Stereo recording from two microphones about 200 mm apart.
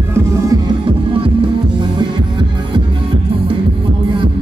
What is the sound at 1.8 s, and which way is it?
Music, 25° right (ahead or behind).